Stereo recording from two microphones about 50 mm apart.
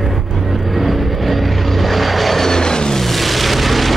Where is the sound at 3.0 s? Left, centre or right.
Centre.